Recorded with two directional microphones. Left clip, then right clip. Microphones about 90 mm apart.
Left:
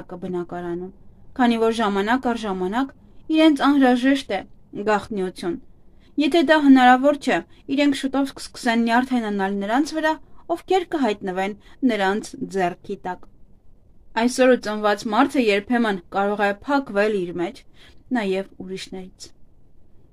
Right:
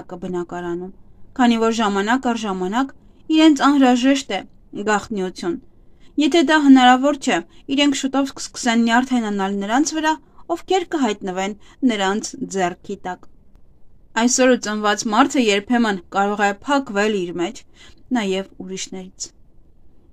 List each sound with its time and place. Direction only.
0.0 s a woman's voice: 30° right (ahead or behind)
14.1 s speech: 35° right (ahead or behind)